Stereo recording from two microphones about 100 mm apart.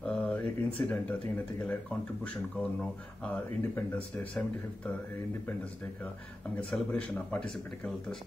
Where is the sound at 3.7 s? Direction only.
15° left (ahead or behind).